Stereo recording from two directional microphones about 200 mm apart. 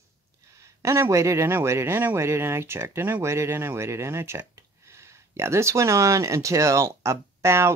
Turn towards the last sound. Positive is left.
turn(degrees=-15)  # may be behind; listen again after turning